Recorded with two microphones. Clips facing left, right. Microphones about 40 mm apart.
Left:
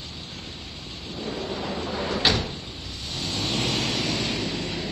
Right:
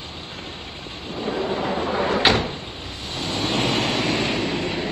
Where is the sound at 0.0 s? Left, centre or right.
Right.